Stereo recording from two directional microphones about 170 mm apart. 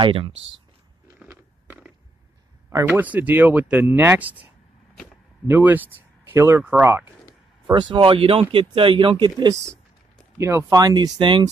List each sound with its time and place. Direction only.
0.0 s speech: 30° right (ahead or behind)
1.2 s biting: 10° right (ahead or behind)
2.7 s speech: 10° right (ahead or behind)
5.5 s speech: 10° right (ahead or behind)
7.9 s speech: 30° right (ahead or behind)